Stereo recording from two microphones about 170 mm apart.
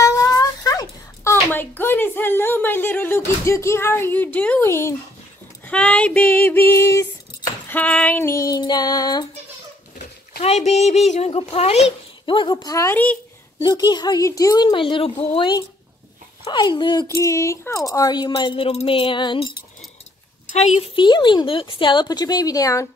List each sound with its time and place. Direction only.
0.0 s a sound: 20° left (ahead or behind)
5.7 s female singing: 5° left (ahead or behind)
7.7 s speech: 10° left (ahead or behind); by 9.3 s 25° left (ahead or behind)
10.4 s speech: 40° left (ahead or behind)
12.7 s female singing: 15° left (ahead or behind)
13.6 s speech: 25° left (ahead or behind)
17.1 s speech: 15° left (ahead or behind)
20.4 s a woman's voice: 40° left (ahead or behind)
21.0 s speech: 25° left (ahead or behind)